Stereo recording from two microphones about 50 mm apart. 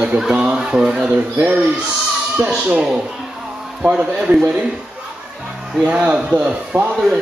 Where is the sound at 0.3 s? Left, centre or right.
Centre.